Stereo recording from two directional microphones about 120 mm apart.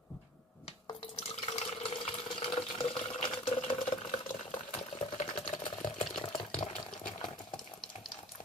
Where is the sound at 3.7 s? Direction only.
45° left (ahead or behind).